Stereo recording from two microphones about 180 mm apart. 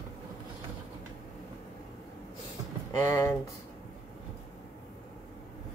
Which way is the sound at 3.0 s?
15° left (ahead or behind).